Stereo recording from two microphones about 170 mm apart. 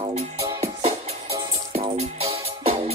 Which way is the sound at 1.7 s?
35° right (ahead or behind).